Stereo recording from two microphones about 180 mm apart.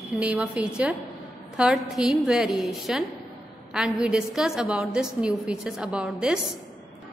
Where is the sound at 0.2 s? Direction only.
5° right (ahead or behind).